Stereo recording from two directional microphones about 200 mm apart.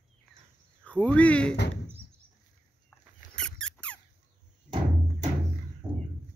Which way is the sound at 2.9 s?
5° left (ahead or behind).